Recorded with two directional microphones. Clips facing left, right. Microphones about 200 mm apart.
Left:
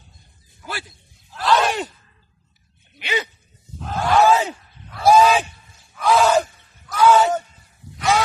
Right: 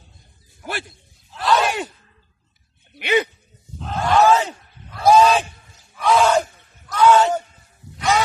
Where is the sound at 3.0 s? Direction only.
55° right (ahead or behind).